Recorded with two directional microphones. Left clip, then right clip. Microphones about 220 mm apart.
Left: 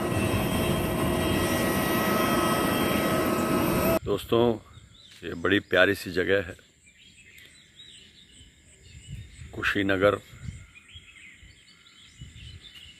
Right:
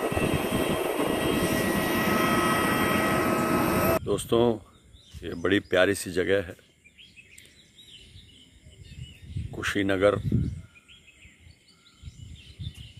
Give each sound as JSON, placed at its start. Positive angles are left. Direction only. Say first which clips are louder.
{"t": 0.3, "sound": "vehicle", "louder": "right 1 dB", "side_deg": 25}
{"t": 4.0, "sound": "speech", "louder": "even", "side_deg": -5}
{"t": 9.5, "sound": "speech", "louder": "left 1 dB", "side_deg": -5}